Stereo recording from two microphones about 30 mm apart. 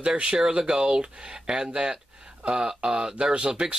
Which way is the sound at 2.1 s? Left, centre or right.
Right.